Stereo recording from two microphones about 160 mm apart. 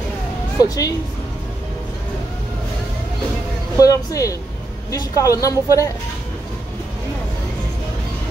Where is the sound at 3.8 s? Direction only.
20° left (ahead or behind).